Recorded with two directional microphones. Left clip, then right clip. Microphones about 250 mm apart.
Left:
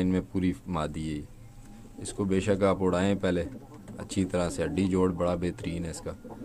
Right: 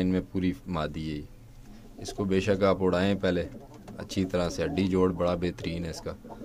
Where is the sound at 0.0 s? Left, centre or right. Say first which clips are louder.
Even; centre.